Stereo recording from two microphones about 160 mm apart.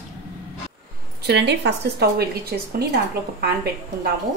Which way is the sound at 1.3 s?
90° right.